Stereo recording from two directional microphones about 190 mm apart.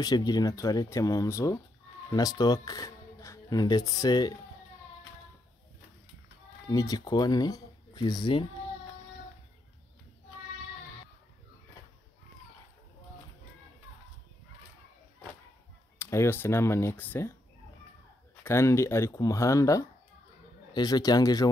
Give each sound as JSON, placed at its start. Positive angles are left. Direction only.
{"t": 0.0, "sound": "speech", "side_deg": 20}
{"t": 6.7, "sound": "speech", "side_deg": 20}
{"t": 16.0, "sound": "speech", "side_deg": 15}
{"t": 18.3, "sound": "a man's voice", "side_deg": 10}